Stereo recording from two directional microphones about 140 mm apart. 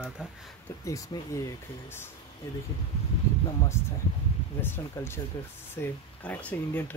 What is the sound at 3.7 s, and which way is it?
Speech, 20° left (ahead or behind).